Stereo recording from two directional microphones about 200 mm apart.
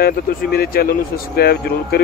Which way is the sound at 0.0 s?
50° left (ahead or behind).